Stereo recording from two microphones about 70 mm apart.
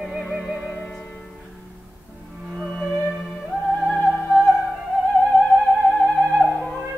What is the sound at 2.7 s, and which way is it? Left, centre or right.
Music, centre.